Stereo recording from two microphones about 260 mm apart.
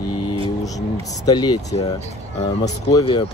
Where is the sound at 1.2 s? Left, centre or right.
Centre.